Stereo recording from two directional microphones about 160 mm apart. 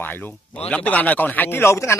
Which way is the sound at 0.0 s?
10° left (ahead or behind).